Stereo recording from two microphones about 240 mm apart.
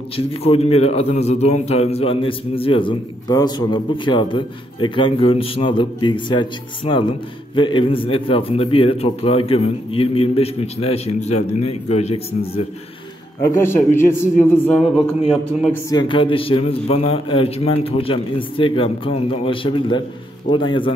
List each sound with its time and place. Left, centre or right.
0.1 s a man's voice: left
13.4 s a man's voice: centre
15.7 s a man's voice: centre